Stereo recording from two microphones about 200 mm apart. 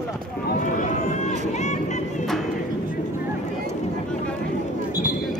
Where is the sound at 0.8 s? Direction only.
35° left (ahead or behind).